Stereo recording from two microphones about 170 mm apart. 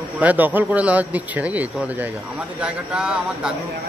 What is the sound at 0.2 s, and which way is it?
A man's voice, 10° right (ahead or behind).